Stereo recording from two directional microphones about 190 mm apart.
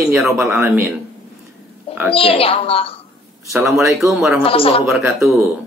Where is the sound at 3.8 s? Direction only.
Centre (ahead or behind).